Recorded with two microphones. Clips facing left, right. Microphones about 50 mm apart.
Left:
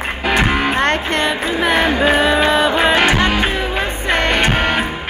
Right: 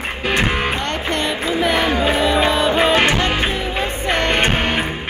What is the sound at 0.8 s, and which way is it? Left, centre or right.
Music, left.